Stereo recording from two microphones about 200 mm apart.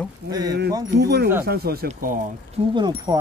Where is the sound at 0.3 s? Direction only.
20° right (ahead or behind).